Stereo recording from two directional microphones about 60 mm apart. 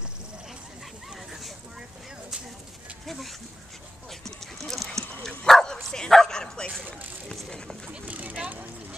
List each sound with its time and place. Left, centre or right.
3.1 s speech: centre
4.1 s dog: centre
8.0 s vehicle: right